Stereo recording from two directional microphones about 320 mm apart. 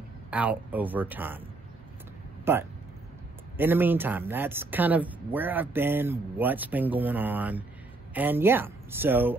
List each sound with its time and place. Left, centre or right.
0.3 s speech: centre
2.5 s speech: centre